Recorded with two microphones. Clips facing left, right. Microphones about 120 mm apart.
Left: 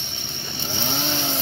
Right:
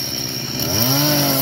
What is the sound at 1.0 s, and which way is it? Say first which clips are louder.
Chainsaw: right 10 dB; 70° right (ahead or behind).